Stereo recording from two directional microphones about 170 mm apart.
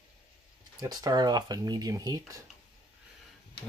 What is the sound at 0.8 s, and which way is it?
Speech, 25° right (ahead or behind).